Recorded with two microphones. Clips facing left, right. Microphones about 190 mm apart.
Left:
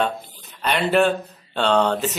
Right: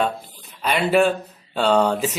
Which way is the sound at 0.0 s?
5° right (ahead or behind).